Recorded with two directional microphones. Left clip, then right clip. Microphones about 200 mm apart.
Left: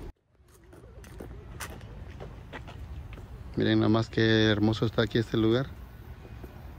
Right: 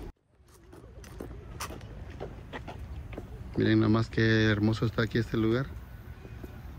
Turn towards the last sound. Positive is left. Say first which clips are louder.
# left 3 dB
turn(degrees=10)  # may be behind; listen again after turning